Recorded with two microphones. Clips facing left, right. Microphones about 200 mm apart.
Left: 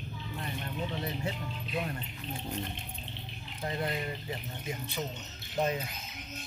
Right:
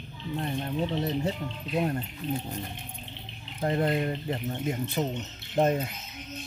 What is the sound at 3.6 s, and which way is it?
Speech, 50° right (ahead or behind).